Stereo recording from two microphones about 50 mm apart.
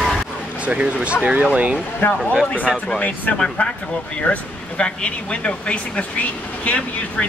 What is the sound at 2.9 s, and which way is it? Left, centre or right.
Speech, left.